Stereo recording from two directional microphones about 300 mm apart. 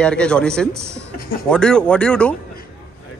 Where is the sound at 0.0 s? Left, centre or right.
Centre.